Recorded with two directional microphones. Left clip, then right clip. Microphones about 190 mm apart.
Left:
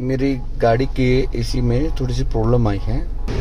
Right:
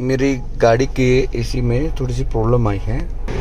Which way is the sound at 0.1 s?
5° right (ahead or behind).